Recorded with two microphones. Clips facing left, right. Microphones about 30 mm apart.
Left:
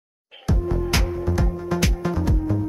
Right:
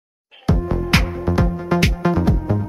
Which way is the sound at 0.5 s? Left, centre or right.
Right.